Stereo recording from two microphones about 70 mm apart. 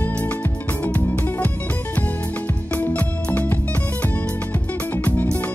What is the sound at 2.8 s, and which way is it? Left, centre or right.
Music, left.